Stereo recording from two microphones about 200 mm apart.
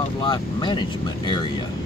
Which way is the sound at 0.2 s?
25° left (ahead or behind).